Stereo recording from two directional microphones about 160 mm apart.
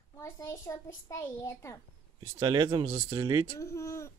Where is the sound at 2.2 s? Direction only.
30° right (ahead or behind).